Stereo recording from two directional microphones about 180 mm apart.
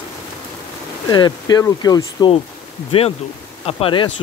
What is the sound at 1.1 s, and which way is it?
Speech, 25° left (ahead or behind).